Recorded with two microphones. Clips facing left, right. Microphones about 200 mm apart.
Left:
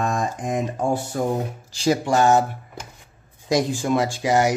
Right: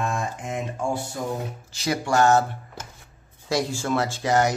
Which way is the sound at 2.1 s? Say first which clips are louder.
Right 1 dB; 15° left (ahead or behind).